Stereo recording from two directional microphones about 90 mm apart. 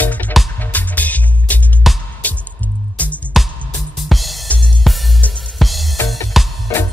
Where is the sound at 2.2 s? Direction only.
15° left (ahead or behind).